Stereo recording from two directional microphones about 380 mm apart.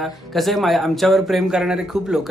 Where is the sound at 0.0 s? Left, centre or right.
Centre.